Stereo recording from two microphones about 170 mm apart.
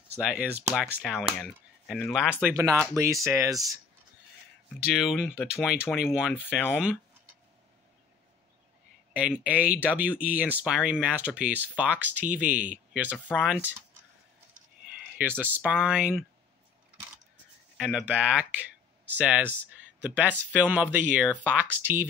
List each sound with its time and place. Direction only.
0.2 s speech: 5° right (ahead or behind)
2.5 s speech: 15° right (ahead or behind)
4.9 s speech: centre (ahead or behind)
9.1 s speech: 5° right (ahead or behind)
15.1 s speech: 10° right (ahead or behind)
17.7 s speech: 5° right (ahead or behind)